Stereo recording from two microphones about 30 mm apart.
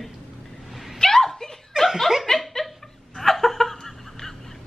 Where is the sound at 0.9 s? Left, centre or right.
Centre.